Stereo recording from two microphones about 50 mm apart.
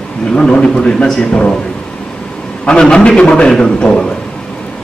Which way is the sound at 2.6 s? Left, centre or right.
Centre.